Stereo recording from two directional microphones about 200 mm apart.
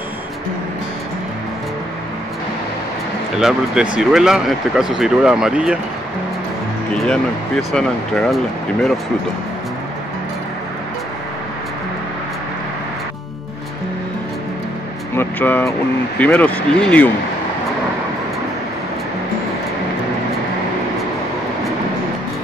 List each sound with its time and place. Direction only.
3.3 s speech: 5° right (ahead or behind)
7.7 s speech: centre (ahead or behind)
15.1 s vehicle: 10° left (ahead or behind)
16.2 s speech: 10° left (ahead or behind)